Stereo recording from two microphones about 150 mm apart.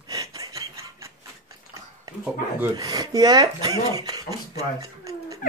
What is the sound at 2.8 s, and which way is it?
Speech, 25° right (ahead or behind).